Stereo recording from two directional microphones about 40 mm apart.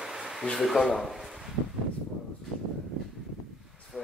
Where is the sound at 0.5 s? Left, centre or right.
Centre.